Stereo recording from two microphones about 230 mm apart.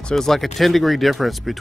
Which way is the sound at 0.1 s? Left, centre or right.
Centre.